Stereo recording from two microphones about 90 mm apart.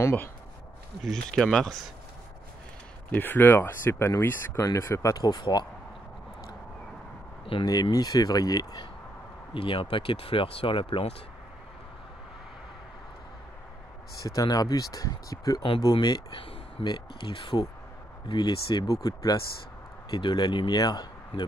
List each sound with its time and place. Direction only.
1.0 s speech: 5° left (ahead or behind)
3.1 s speech: 20° left (ahead or behind)
4.6 s speech: 35° left (ahead or behind); by 5.7 s 50° left (ahead or behind)
7.6 s speech: 45° left (ahead or behind)
9.5 s speech: 80° left
14.2 s speech: 45° left (ahead or behind)
16.3 s a sound: 90° left
16.9 s speech: 65° left (ahead or behind)
18.9 s speech: 45° left (ahead or behind)
20.1 s speech: 55° left (ahead or behind)